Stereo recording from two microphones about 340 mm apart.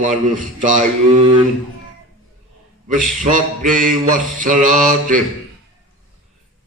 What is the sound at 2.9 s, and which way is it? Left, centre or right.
Mantra, right.